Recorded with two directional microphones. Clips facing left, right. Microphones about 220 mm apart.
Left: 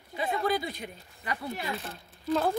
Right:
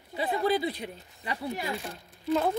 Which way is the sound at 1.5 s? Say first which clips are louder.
Right 2 dB; 15° right (ahead or behind).